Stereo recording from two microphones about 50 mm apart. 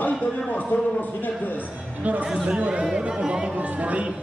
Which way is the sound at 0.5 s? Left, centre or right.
Left.